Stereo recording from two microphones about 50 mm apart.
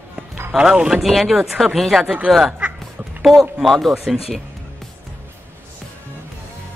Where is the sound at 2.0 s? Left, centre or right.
Right.